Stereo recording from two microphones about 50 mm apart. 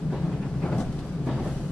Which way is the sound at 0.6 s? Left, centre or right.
Centre.